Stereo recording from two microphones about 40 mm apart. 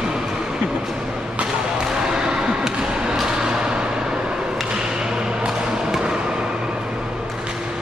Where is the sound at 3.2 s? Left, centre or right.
Centre.